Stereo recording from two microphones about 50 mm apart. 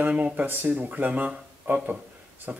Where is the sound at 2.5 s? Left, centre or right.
Right.